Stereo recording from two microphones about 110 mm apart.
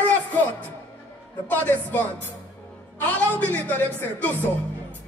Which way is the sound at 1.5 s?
15° left (ahead or behind).